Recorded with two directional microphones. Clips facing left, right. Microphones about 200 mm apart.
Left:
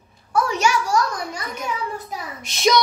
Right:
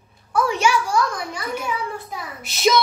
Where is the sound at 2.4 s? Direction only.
5° right (ahead or behind).